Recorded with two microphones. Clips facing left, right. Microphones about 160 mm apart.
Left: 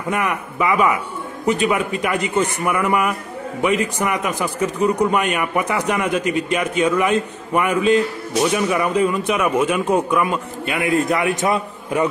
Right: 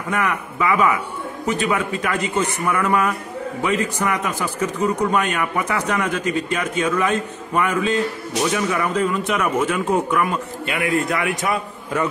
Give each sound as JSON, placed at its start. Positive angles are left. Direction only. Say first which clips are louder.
{"t": 0.1, "sound": "a man's voice", "louder": "even", "side_deg": 20}